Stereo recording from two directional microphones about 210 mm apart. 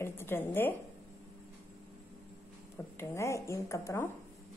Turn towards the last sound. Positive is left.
turn(degrees=15)  # may be behind; listen again after turning